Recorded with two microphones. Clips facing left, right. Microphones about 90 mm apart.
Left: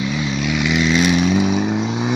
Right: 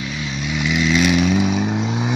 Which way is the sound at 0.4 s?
80° left.